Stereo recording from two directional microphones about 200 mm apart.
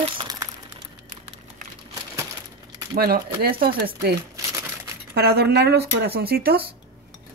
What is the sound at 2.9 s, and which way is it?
Speech, 50° right (ahead or behind).